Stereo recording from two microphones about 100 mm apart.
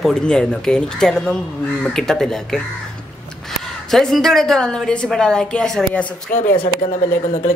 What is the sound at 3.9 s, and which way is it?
Speech, centre (ahead or behind).